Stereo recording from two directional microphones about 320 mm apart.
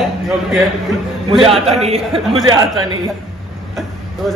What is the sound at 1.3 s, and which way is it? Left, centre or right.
Speech, centre.